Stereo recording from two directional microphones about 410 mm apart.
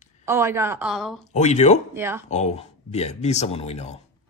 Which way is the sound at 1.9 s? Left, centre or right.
Centre.